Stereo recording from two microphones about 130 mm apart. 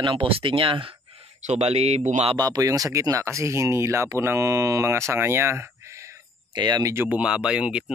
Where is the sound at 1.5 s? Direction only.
55° right (ahead or behind).